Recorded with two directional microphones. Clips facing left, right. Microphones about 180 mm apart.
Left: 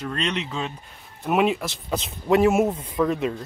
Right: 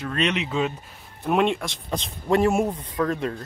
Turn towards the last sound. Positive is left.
turn(degrees=5)  # may be behind; listen again after turning